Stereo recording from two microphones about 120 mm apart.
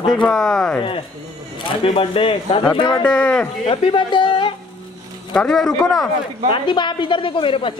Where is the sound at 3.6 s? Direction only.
45° left (ahead or behind).